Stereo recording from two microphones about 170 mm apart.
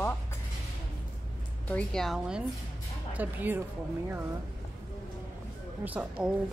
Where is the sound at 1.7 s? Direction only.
5° left (ahead or behind); by 3.6 s 10° right (ahead or behind).